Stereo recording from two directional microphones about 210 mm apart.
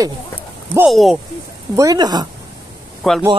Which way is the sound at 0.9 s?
Centre (ahead or behind).